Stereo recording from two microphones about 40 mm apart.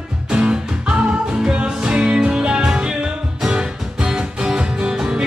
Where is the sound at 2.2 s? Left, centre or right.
Centre.